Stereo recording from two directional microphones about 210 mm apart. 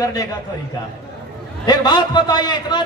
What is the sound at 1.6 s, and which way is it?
Speech, 20° left (ahead or behind).